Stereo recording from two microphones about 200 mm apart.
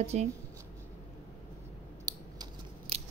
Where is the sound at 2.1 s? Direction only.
15° right (ahead or behind).